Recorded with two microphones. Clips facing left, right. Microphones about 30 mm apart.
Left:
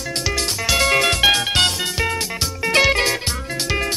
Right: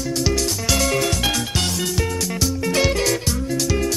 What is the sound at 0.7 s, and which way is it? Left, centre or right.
Music, left.